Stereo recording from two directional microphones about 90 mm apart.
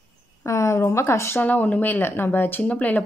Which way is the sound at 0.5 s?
35° left (ahead or behind).